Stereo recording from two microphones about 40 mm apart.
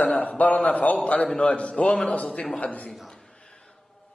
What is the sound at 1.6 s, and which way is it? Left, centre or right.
Speech, left.